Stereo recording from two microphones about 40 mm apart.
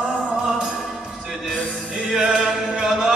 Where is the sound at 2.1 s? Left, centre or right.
Centre.